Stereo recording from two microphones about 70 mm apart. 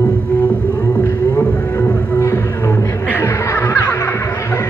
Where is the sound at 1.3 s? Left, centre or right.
Left.